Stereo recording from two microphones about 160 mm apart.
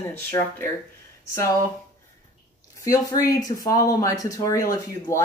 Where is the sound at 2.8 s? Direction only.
20° left (ahead or behind).